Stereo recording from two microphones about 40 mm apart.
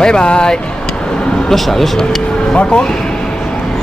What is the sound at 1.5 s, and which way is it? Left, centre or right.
Speech, centre.